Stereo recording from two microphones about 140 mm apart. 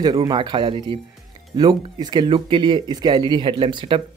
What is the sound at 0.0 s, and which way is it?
Speech, 30° right (ahead or behind).